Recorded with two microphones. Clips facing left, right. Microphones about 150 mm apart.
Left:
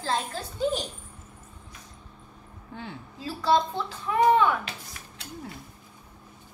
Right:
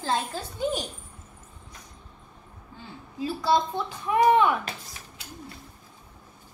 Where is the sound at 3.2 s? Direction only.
15° right (ahead or behind).